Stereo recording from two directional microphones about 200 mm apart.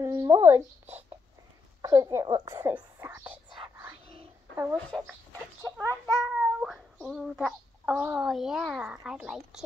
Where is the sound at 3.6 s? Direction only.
20° right (ahead or behind).